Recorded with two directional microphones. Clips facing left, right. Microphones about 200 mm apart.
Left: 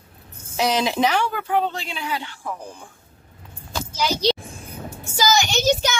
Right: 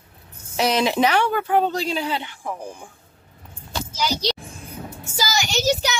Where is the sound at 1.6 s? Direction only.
40° right (ahead or behind).